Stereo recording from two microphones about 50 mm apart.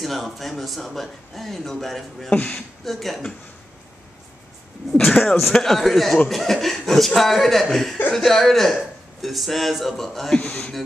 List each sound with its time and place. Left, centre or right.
0.0 s speech: centre
2.2 s speech: centre
2.8 s speech: centre
5.0 s speech: centre